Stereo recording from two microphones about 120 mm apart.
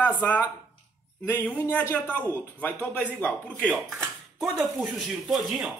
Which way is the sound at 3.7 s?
20° right (ahead or behind).